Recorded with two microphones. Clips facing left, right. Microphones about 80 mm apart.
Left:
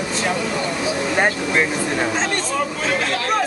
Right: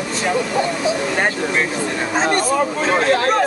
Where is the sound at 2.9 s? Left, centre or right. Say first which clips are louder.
Right 9 dB; right.